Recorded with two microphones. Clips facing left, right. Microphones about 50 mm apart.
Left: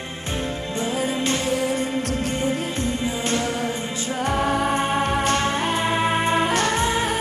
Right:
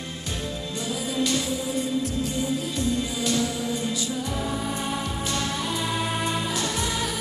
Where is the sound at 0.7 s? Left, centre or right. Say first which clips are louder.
Left 4 dB; left.